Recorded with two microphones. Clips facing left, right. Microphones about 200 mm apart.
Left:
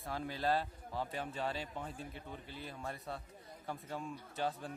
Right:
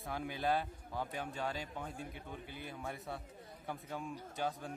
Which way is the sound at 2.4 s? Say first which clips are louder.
Even; 55° right (ahead or behind).